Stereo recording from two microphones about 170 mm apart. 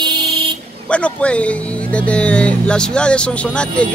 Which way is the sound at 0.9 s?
5° left (ahead or behind).